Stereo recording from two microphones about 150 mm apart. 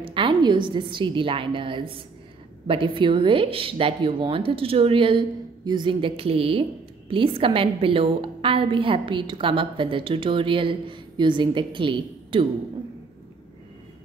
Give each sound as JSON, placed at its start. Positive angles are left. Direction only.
{"t": 0.0, "sound": "a woman's voice", "side_deg": -35}